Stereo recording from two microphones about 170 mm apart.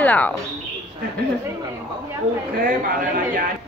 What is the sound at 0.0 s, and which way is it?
Speech, 10° left (ahead or behind).